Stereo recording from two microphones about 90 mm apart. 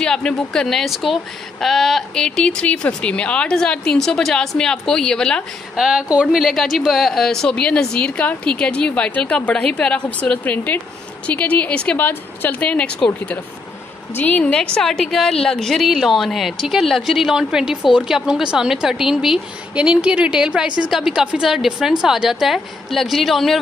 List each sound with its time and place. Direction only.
0.0 s speech: 10° left (ahead or behind)
5.8 s a woman's voice: 5° right (ahead or behind)